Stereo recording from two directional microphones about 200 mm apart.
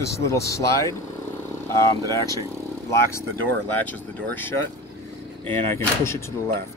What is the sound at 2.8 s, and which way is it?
Speech, 15° left (ahead or behind).